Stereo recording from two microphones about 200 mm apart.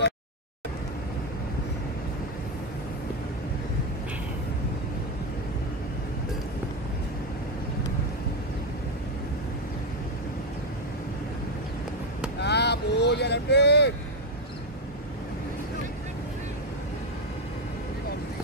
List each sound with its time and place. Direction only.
12.4 s vehicle: 55° left (ahead or behind)